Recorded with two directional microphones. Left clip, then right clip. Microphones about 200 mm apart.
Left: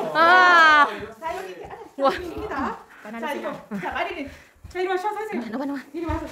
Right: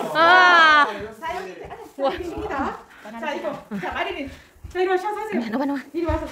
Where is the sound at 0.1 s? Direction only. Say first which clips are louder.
Right 1 dB; 5° left (ahead or behind).